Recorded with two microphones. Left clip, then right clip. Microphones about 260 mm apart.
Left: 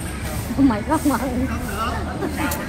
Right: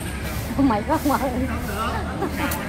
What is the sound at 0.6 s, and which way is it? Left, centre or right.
Speech, right.